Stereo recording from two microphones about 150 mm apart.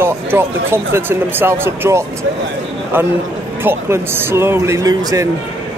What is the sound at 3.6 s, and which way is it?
Speech, 15° right (ahead or behind).